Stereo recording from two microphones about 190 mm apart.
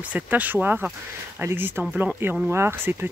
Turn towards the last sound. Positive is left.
turn(degrees=-10)  # may be behind; listen again after turning